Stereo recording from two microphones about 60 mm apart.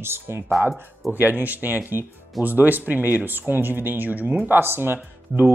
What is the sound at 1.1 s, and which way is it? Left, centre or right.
Speech, right.